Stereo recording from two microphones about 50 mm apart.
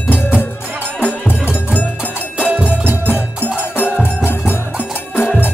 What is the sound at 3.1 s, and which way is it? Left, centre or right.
Music, left.